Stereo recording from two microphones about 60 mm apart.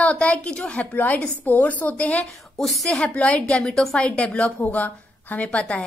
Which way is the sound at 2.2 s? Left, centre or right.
Centre.